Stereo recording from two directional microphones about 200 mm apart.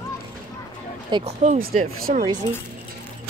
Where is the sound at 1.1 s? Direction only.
35° right (ahead or behind).